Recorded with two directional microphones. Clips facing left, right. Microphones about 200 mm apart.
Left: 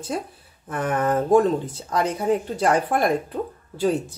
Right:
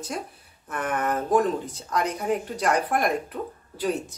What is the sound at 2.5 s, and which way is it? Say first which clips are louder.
Speech: left 3 dB; 30° left (ahead or behind).